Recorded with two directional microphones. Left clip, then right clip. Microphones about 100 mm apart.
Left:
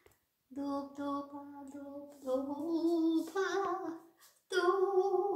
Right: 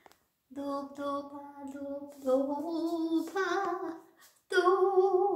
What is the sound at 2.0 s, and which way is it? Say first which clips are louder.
Speech: right 7 dB; 15° right (ahead or behind).